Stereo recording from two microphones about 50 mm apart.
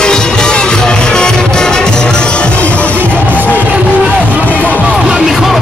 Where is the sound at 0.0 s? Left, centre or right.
Centre.